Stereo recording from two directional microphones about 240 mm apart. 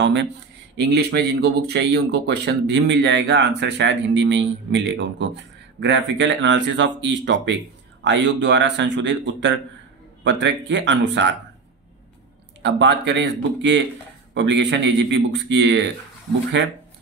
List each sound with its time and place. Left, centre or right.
0.0 s speech: right
12.6 s speech: right